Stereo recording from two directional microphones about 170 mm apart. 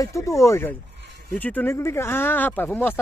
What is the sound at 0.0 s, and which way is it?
Speech, 15° left (ahead or behind).